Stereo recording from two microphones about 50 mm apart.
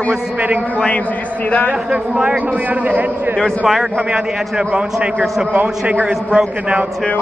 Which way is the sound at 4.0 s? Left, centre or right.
Right.